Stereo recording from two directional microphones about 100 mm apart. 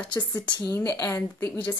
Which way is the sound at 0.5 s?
35° left (ahead or behind).